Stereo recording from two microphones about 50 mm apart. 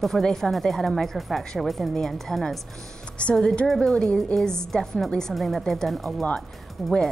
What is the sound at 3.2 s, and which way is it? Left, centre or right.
Speech, centre.